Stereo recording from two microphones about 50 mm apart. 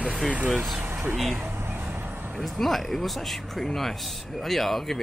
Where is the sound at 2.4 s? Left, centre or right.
Centre.